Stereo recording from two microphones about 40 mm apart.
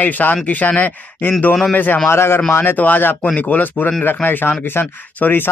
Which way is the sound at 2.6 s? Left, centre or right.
Left.